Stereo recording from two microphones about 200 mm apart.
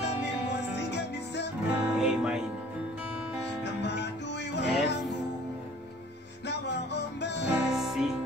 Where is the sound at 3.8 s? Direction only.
60° left (ahead or behind).